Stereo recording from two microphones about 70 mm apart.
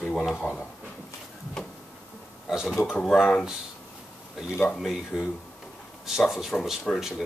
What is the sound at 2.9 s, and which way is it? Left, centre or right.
Speech, centre.